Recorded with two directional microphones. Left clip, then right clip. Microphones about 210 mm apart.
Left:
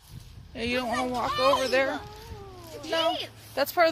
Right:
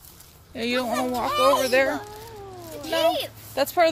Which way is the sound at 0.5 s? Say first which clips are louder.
Right 3 dB; 5° right (ahead or behind).